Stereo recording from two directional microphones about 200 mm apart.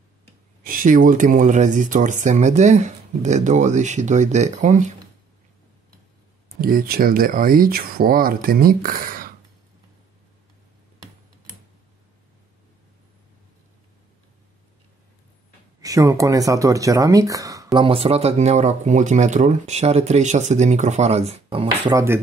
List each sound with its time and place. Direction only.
0.7 s speech: 45° right (ahead or behind)
6.6 s speech: 45° right (ahead or behind)
15.8 s speech: 15° right (ahead or behind)